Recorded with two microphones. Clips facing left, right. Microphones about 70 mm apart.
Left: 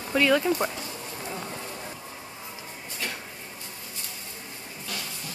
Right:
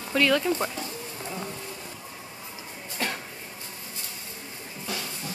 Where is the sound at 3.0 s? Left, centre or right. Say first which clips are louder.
Right 4 dB; right.